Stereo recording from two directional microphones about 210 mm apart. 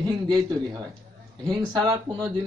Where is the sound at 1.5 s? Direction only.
20° right (ahead or behind).